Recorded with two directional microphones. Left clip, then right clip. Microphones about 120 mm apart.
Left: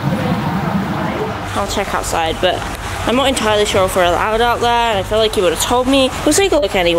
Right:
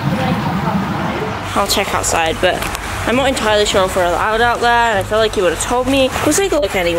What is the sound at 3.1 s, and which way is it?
Speech, 20° left (ahead or behind).